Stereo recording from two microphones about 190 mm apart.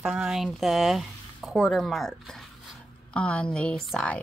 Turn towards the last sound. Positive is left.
turn(degrees=5)  # may be behind; listen again after turning